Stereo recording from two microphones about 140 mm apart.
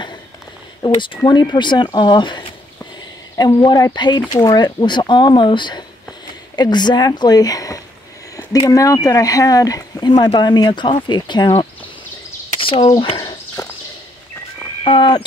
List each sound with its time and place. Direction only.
0.8 s speech: 35° left (ahead or behind)
12.5 s a sound: 40° left (ahead or behind)
13.6 s walk: 25° left (ahead or behind)
14.9 s speech: 35° left (ahead or behind)